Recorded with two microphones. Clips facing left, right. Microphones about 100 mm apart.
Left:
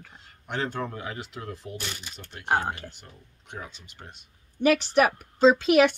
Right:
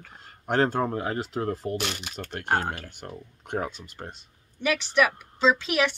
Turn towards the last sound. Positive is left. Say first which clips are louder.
# left 5 dB
turn(degrees=45)  # may be behind; listen again after turning